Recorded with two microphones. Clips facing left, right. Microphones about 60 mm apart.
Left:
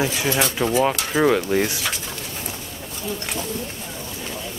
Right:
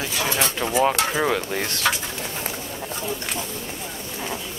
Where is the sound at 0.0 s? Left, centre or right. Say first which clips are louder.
Left 3 dB; centre.